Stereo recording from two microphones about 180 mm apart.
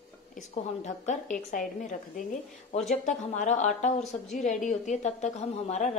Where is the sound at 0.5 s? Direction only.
40° left (ahead or behind).